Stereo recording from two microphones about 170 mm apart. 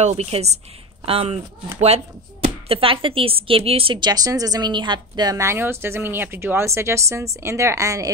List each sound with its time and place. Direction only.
0.0 s speech: 40° right (ahead or behind)
2.4 s speech: 35° right (ahead or behind); by 8.1 s 20° right (ahead or behind)